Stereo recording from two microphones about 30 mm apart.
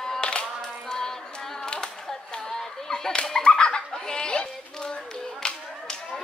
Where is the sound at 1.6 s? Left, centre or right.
Left.